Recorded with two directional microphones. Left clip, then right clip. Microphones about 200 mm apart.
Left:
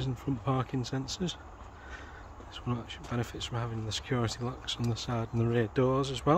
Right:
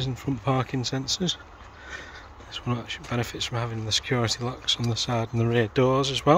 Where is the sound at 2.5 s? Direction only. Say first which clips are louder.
Right 7 dB; 15° right (ahead or behind).